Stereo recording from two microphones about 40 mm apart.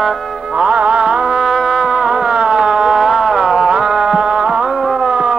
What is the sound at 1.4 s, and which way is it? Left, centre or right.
Music, centre.